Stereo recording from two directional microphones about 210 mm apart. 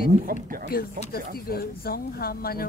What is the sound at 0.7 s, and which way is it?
Speech, 45° left (ahead or behind).